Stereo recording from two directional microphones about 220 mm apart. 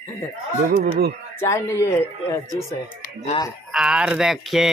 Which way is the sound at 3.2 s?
20° left (ahead or behind).